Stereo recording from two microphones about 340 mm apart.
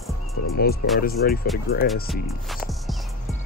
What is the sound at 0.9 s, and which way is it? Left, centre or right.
Speech, left.